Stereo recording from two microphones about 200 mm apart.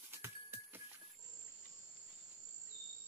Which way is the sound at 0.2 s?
10° right (ahead or behind).